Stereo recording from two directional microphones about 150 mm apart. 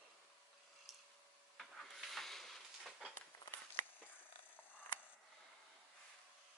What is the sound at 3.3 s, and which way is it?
Walk, 30° left (ahead or behind).